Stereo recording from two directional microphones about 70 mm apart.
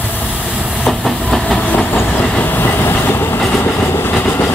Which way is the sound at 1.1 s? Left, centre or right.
Centre.